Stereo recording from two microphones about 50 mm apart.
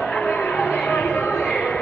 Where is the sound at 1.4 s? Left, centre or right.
Centre.